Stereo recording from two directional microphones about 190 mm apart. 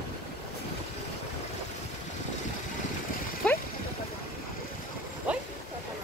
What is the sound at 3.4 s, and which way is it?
Splash, 5° left (ahead or behind).